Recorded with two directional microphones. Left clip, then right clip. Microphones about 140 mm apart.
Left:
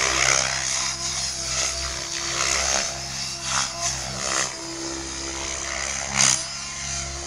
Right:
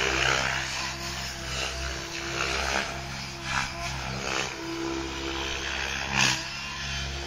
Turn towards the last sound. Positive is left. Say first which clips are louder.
# left 3 dB
turn(degrees=55)  # may be behind; listen again after turning